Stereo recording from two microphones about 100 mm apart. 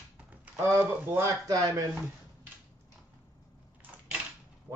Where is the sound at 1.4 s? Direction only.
40° right (ahead or behind).